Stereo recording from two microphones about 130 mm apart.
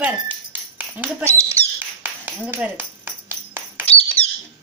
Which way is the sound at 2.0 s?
10° right (ahead or behind).